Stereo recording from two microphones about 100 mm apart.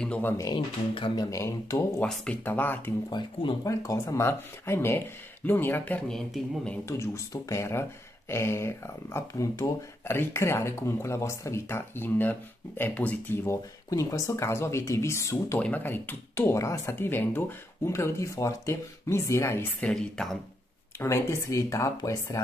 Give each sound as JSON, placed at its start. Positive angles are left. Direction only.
{"t": 0.0, "sound": "speech", "side_deg": 15}
{"t": 0.6, "sound": "speech", "side_deg": 55}
{"t": 1.3, "sound": "speech", "side_deg": 30}
{"t": 2.0, "sound": "speech", "side_deg": 15}
{"t": 3.1, "sound": "speech", "side_deg": 50}
{"t": 3.6, "sound": "speech", "side_deg": 30}
{"t": 6.0, "sound": "speech", "side_deg": 5}
{"t": 6.9, "sound": "speech", "side_deg": 30}
{"t": 13.8, "sound": "speech", "side_deg": 35}
{"t": 15.6, "sound": "speech", "side_deg": 20}
{"t": 19.8, "sound": "speech", "side_deg": 5}
{"t": 21.0, "sound": "speech", "side_deg": 25}